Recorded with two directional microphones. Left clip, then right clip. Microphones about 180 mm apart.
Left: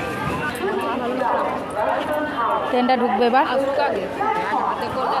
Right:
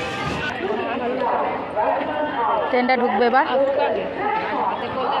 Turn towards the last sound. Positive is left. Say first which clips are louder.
# even
turn(degrees=20)  # may be behind; listen again after turning